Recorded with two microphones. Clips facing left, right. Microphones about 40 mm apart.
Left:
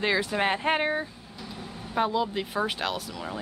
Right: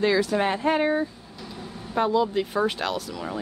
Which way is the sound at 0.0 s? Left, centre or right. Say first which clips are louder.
Right 4 dB; left.